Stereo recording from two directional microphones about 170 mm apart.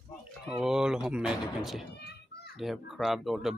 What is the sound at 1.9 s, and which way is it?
Children playing, 75° left (ahead or behind).